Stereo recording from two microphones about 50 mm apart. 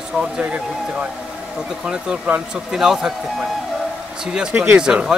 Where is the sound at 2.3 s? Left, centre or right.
Right.